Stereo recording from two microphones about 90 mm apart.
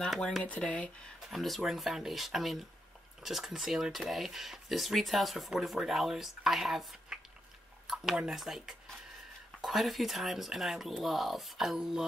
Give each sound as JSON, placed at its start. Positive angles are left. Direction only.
{"t": 0.4, "sound": "speech", "side_deg": 15}
{"t": 1.3, "sound": "speech", "side_deg": 0}